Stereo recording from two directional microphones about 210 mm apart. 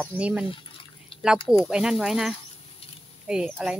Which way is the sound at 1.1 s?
25° left (ahead or behind).